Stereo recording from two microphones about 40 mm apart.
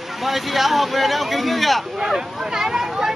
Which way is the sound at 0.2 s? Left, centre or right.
Centre.